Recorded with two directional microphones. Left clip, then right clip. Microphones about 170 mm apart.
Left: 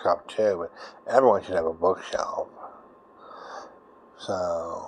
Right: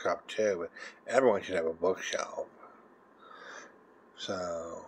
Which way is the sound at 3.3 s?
20° right (ahead or behind).